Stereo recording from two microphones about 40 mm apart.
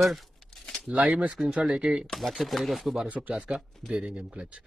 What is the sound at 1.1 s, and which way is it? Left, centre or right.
Speech, right.